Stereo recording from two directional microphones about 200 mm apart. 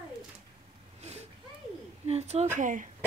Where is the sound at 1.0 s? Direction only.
35° right (ahead or behind).